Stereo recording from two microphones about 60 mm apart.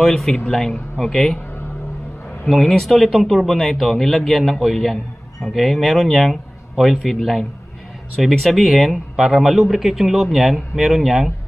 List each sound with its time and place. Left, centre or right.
0.0 s a man's voice: centre
2.4 s speech: centre